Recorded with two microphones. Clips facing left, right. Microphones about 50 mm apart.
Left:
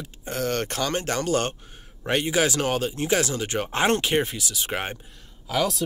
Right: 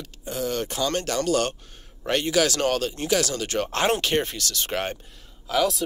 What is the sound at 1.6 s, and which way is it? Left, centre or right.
A man's voice, centre.